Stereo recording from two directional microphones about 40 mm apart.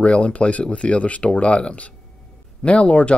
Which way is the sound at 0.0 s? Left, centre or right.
Left.